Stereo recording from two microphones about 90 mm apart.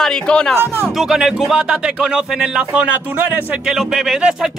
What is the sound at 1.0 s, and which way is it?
Speech, 5° right (ahead or behind).